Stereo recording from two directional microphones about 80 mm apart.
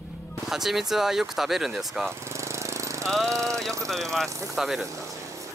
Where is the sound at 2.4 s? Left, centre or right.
Right.